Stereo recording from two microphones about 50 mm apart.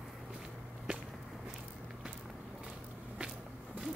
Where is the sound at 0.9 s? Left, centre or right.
Centre.